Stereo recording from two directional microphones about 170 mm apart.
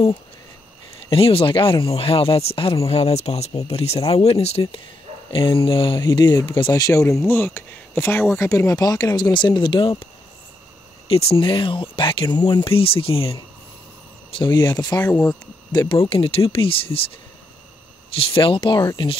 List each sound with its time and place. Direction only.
1.1 s speech: 35° left (ahead or behind)
11.1 s speech: 35° left (ahead or behind)
15.0 s speech: 10° left (ahead or behind)
15.7 s speech: 25° left (ahead or behind)
18.1 s speech: 30° left (ahead or behind)